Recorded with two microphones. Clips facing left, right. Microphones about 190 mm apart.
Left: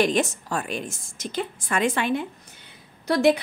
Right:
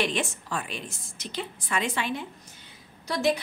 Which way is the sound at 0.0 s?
40° left (ahead or behind).